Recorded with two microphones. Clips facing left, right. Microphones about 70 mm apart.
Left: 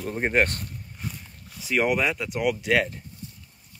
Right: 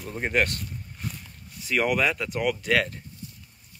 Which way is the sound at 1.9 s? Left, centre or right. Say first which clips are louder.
Even; centre.